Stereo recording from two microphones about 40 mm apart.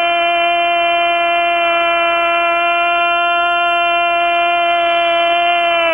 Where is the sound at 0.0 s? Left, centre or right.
Centre.